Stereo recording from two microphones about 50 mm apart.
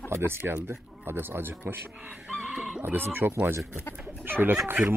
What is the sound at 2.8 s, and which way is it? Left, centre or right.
Speech, right.